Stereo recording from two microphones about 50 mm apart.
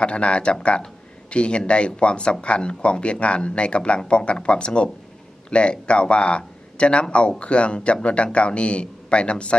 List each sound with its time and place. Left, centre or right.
0.0 s speech: left